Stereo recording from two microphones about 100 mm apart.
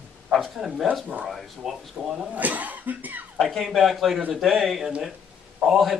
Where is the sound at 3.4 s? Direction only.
Centre (ahead or behind).